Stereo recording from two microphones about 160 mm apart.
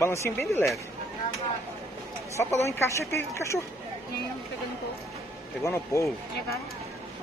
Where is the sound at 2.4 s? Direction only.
15° left (ahead or behind).